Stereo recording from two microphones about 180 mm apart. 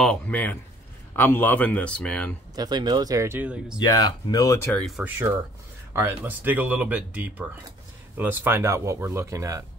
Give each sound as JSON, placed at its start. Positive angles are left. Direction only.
{"t": 0.0, "sound": "speech", "side_deg": 5}
{"t": 2.5, "sound": "speech", "side_deg": -20}
{"t": 3.8, "sound": "speech", "side_deg": 20}
{"t": 5.9, "sound": "speech", "side_deg": -10}